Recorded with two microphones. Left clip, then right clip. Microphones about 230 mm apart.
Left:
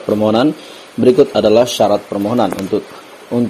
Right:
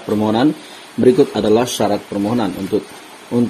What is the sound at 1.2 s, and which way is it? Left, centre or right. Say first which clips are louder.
A man's voice: left 4 dB; centre.